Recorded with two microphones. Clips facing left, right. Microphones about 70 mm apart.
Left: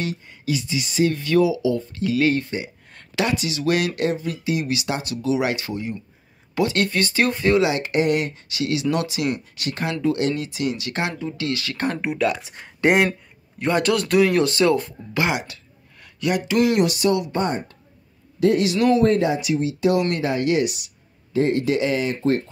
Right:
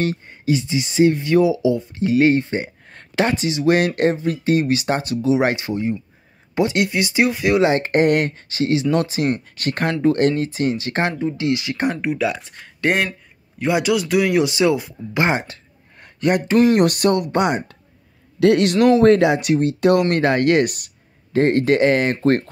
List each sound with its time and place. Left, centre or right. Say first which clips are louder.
0.0 s speech: right 5 dB; right; by 7.6 s centre
7.6 s speech: right 4 dB; right; by 12.0 s centre
12.0 s speech: right 1 dB; centre
12.4 s speech: left 3 dB; centre
13.6 s speech: right 2 dB; centre
15.1 s speech: right 3 dB; right
17.4 s speech: right 4 dB; right
18.4 s speech: right 4 dB; right
19.0 s speech: right 5 dB; right